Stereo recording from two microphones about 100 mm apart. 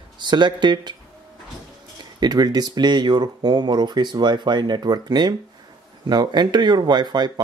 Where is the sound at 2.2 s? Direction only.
45° right (ahead or behind).